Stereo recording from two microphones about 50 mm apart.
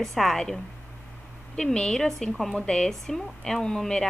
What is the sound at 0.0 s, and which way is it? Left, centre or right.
Speech, centre.